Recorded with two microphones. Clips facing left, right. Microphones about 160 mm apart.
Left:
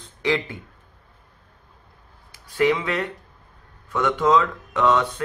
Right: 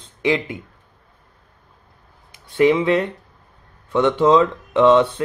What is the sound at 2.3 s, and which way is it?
Speech, 25° right (ahead or behind).